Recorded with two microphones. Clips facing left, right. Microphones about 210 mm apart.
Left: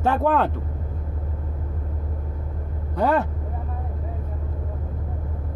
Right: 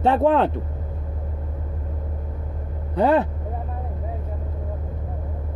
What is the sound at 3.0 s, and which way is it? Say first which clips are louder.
Speech: right 3 dB; 30° right (ahead or behind).